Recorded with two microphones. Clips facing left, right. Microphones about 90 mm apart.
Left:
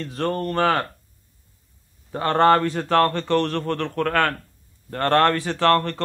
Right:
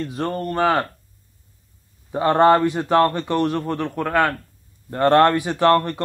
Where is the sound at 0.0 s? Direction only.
10° right (ahead or behind).